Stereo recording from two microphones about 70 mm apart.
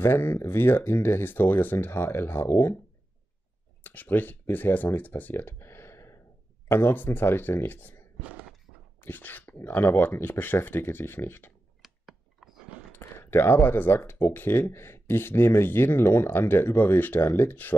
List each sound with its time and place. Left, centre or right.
0.0 s speech: left
3.8 s speech: left
9.0 s speech: left
11.8 s a sound: centre
12.9 s speech: left